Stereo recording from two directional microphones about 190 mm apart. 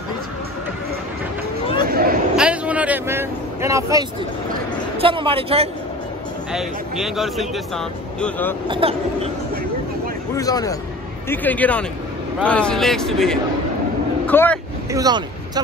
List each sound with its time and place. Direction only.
1.9 s a sound: 50° right (ahead or behind)
2.3 s vehicle: 5° right (ahead or behind)
4.9 s speech: 30° right (ahead or behind)
6.5 s speech: centre (ahead or behind)
8.6 s speech: 30° right (ahead or behind)
10.3 s a man's voice: 20° left (ahead or behind)
14.9 s a sound: 20° right (ahead or behind)